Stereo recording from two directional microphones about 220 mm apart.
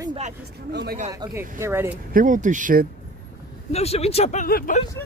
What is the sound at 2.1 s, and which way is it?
Speech, 35° right (ahead or behind).